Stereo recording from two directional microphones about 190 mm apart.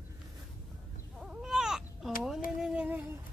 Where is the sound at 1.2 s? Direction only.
Centre (ahead or behind).